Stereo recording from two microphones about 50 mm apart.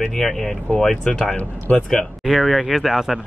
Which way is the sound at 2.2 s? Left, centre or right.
Centre.